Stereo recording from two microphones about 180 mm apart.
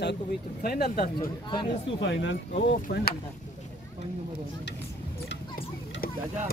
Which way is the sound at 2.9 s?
55° left (ahead or behind).